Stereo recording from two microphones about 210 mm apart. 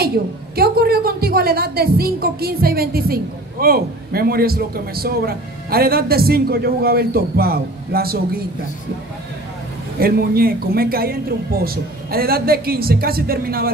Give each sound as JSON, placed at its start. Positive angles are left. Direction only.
{"t": 0.6, "sound": "a woman's voice", "side_deg": -45}
{"t": 9.9, "sound": "a woman's voice", "side_deg": -45}